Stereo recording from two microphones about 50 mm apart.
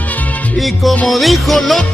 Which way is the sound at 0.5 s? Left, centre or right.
Centre.